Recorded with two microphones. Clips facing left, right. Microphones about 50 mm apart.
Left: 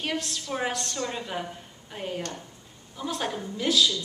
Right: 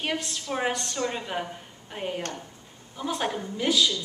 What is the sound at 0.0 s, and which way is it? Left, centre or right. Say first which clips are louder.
A woman's voice: right 1 dB; centre.